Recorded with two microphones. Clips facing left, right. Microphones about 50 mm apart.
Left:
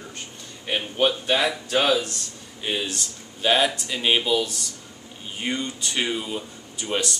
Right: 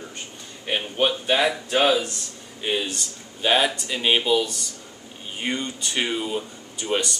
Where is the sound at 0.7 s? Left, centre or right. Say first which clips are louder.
Even; centre.